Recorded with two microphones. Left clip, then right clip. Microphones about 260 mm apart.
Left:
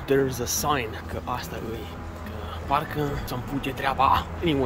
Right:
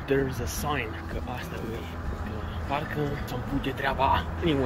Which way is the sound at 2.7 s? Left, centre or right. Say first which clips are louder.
Left 5 dB; centre.